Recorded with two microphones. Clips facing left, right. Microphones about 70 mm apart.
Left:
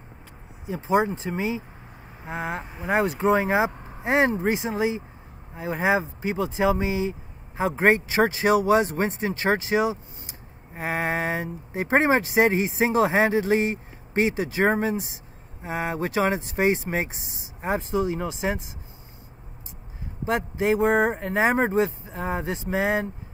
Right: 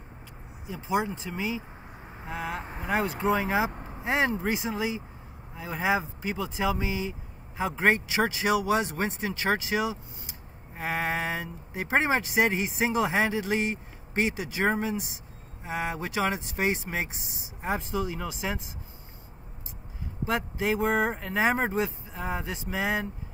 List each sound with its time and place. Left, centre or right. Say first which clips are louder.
0.7 s speech: left 6 dB; left
20.2 s speech: left 5 dB; left